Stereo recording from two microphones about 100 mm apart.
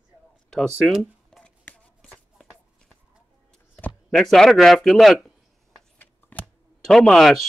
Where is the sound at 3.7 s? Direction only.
15° left (ahead or behind).